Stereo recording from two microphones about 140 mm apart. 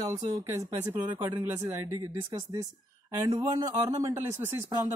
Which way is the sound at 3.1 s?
25° right (ahead or behind).